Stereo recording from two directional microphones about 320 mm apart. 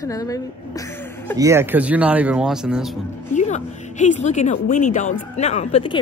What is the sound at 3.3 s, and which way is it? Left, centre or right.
A woman's voice, left.